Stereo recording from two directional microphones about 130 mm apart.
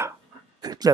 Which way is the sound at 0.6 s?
30° right (ahead or behind).